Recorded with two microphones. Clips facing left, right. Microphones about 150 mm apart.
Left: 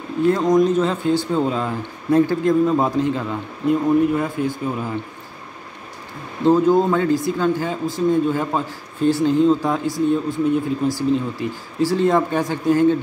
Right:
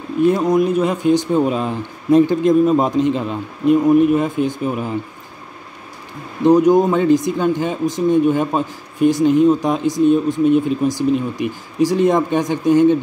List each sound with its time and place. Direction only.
0.2 s speech: 20° right (ahead or behind)
6.4 s speech: 15° right (ahead or behind)